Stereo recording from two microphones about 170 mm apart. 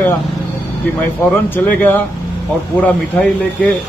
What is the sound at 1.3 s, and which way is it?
Speech, 10° left (ahead or behind).